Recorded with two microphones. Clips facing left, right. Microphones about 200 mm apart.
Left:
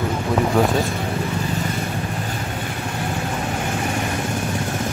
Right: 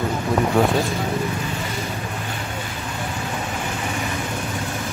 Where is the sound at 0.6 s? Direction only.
Centre (ahead or behind).